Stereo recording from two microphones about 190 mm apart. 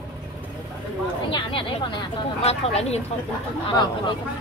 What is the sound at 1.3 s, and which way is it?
Speech, 25° left (ahead or behind).